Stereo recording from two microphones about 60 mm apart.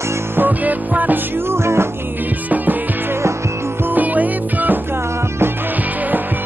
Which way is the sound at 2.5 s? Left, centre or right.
Right.